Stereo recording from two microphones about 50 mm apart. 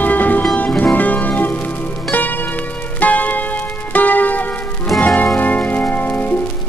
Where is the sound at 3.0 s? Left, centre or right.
Left.